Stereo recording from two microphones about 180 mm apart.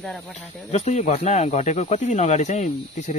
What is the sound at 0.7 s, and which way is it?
Speech, 40° left (ahead or behind).